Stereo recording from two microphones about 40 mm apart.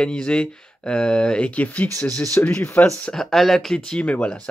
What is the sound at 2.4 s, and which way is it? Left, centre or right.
Speech, left.